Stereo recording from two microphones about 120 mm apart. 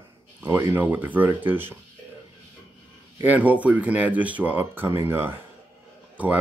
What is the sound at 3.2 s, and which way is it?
Speech, 15° right (ahead or behind).